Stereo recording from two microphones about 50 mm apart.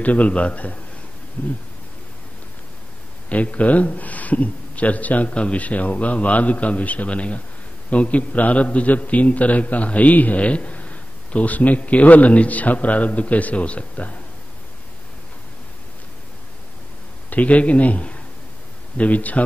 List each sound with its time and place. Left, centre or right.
0.0 s a man's voice: left
3.3 s a man's voice: left
17.3 s a man's voice: left